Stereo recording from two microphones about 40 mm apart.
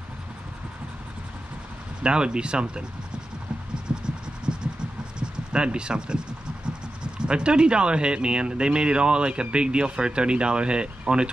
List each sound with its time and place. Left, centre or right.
2.0 s speech: right
3.9 s hum: right
4.5 s a sound: right
5.5 s speech: right